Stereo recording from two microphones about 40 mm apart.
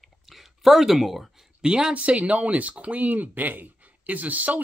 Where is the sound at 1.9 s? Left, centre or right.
Right.